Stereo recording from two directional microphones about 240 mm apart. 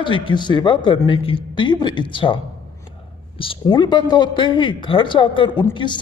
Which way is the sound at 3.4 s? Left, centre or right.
Left.